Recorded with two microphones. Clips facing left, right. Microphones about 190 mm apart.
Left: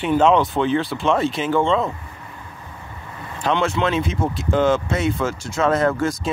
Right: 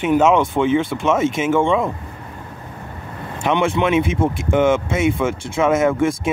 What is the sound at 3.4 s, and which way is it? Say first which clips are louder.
Speech: right 2 dB; 20° right (ahead or behind).